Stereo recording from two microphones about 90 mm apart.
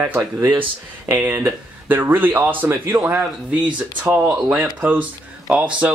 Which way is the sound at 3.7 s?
15° right (ahead or behind).